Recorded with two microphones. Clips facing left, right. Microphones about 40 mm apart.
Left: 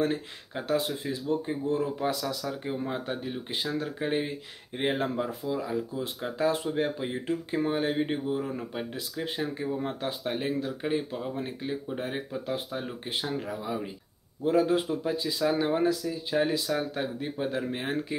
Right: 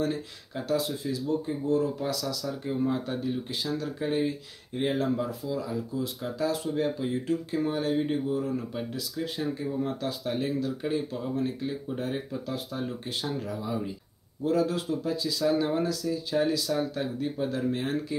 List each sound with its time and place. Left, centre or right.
0.0 s speech: left